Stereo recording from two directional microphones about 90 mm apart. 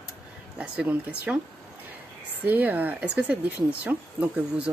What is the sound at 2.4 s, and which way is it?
Speech, 20° right (ahead or behind).